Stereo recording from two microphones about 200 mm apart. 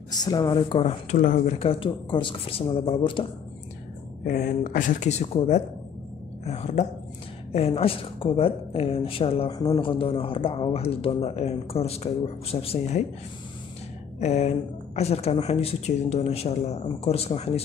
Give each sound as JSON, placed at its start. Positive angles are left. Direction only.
{"t": 0.1, "sound": "a woman's voice", "side_deg": 20}
{"t": 1.1, "sound": "speech", "side_deg": 40}
{"t": 1.7, "sound": "a woman's voice", "side_deg": 25}
{"t": 4.3, "sound": "a woman's voice", "side_deg": 40}
{"t": 14.2, "sound": "speech", "side_deg": 35}